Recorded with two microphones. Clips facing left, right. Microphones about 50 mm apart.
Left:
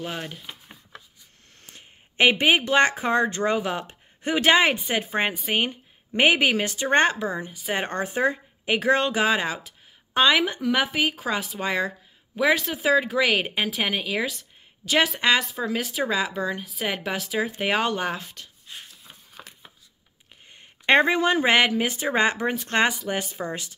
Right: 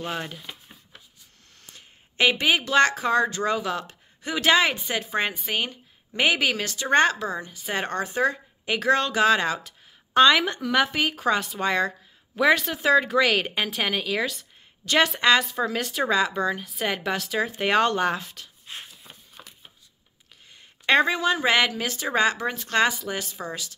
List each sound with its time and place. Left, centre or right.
0.0 s speech: centre
1.7 s a woman's voice: left; by 18.5 s centre
20.5 s speech: left